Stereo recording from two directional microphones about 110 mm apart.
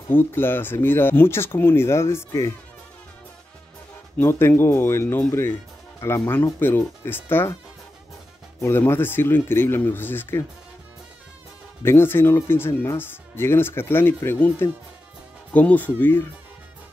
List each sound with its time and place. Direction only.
0.1 s speech: 20° left (ahead or behind)
4.2 s speech: 20° left (ahead or behind)
8.5 s speech: 25° left (ahead or behind)
11.8 s speech: 20° left (ahead or behind)